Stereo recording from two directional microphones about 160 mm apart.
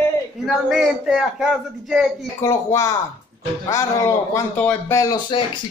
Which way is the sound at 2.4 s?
20° left (ahead or behind).